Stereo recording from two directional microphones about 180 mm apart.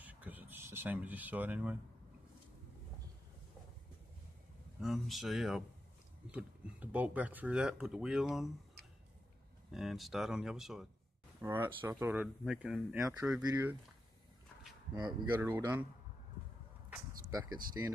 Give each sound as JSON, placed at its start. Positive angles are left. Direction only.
{"t": 0.0, "sound": "a sound", "side_deg": -10}
{"t": 4.7, "sound": "speech", "side_deg": 0}
{"t": 9.7, "sound": "speech", "side_deg": 0}
{"t": 11.4, "sound": "speech", "side_deg": -10}
{"t": 12.9, "sound": "speech", "side_deg": -15}
{"t": 15.0, "sound": "speech", "side_deg": -20}
{"t": 17.3, "sound": "speech", "side_deg": -20}